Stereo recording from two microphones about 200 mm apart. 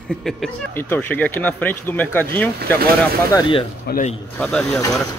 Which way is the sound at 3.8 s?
40° left (ahead or behind).